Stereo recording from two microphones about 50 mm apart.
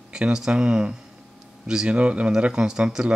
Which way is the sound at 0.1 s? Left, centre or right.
Centre.